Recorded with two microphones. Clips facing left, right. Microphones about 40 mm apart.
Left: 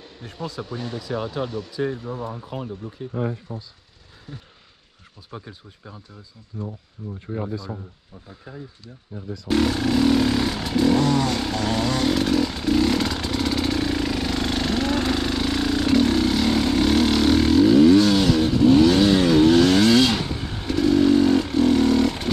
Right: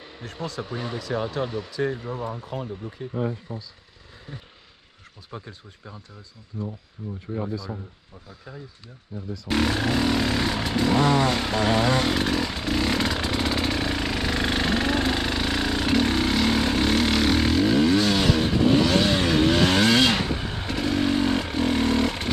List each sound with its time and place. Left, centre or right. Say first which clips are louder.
0.2 s speech: right 1 dB; centre
0.6 s speech: right 1 dB; centre
2.4 s speech: even; centre
2.7 s speech: left 1 dB; centre
5.3 s speech: left 1 dB; centre
6.5 s speech: even; centre
9.1 s speech: even; left
9.5 s a sound: left 3 dB; centre
11.0 s vehicle: even; right